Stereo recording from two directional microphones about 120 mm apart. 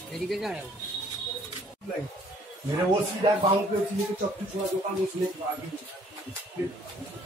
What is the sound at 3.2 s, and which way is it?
Speech, 55° right (ahead or behind).